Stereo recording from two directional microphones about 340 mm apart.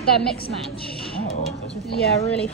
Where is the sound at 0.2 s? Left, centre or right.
Centre.